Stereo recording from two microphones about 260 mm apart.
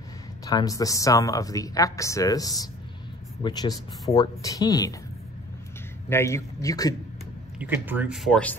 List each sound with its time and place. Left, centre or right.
0.5 s speech: centre
4.1 s speech: centre
6.0 s speech: centre
7.5 s speech: centre